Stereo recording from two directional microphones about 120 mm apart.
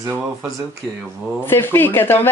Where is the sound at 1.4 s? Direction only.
20° left (ahead or behind).